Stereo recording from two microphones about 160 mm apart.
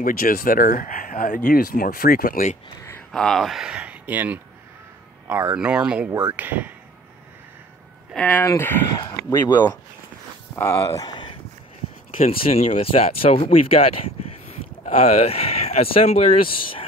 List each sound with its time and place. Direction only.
0.0 s speech: 65° left (ahead or behind)
3.1 s speech: centre (ahead or behind)
8.1 s speech: 10° left (ahead or behind)
10.5 s speech: 15° left (ahead or behind)
12.3 s speech: 40° left (ahead or behind)
15.0 s speech: 40° left (ahead or behind)